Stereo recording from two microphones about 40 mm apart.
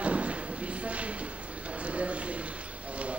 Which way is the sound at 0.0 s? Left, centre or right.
Right.